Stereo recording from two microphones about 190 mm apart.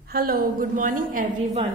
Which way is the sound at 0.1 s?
50° right (ahead or behind).